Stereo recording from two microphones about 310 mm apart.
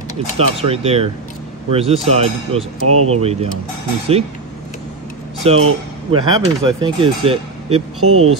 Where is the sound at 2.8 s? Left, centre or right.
Right.